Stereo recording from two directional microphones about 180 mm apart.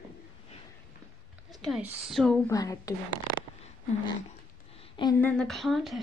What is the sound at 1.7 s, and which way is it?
Speech, 5° right (ahead or behind).